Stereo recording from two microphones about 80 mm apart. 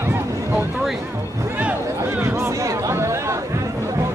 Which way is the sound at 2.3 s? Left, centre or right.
Right.